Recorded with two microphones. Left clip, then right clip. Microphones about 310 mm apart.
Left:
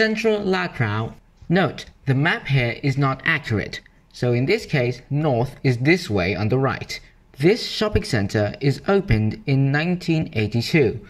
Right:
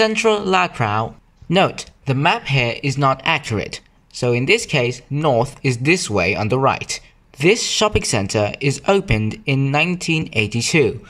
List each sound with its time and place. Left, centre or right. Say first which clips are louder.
0.0 s speech: right 4 dB; centre
5.2 s speech: right 5 dB; right
5.6 s speech: right 2 dB; centre